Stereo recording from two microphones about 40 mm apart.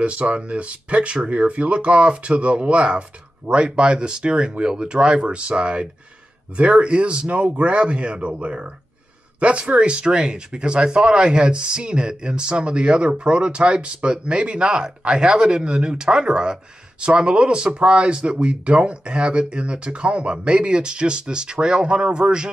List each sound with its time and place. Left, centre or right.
0.0 s speech: right